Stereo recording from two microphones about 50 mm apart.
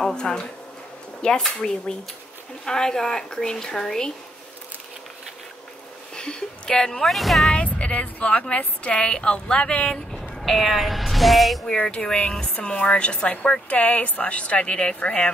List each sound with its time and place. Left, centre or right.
0.0 s a woman's voice: centre
6.1 s a woman's voice: centre
7.1 s speech: centre
7.5 s speech: left
10.1 s speech: centre
11.6 s speech: centre